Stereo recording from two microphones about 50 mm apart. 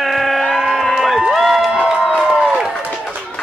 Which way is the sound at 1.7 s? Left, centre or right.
Centre.